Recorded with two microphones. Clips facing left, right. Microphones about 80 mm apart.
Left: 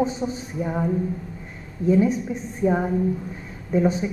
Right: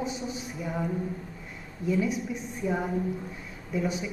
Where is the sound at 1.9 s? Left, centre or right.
Left.